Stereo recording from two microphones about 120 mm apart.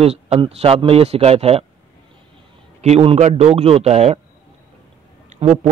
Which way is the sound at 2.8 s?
60° right (ahead or behind).